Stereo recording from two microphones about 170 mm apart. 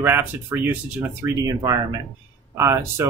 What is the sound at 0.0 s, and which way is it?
A man's voice, 10° right (ahead or behind).